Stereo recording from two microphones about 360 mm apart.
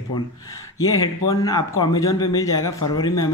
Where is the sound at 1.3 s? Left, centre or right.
Centre.